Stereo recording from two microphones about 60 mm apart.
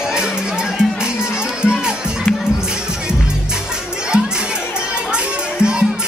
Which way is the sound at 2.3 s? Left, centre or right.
Centre.